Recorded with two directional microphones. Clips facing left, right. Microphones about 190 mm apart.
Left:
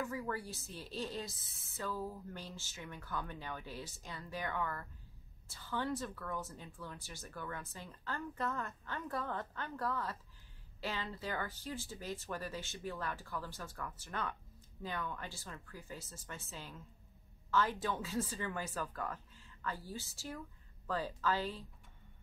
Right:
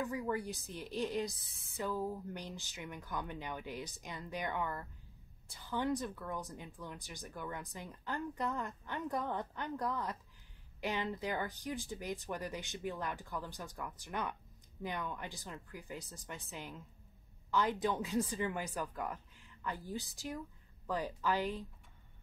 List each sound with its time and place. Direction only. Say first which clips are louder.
0.0 s speech: right 3 dB; 15° right (ahead or behind)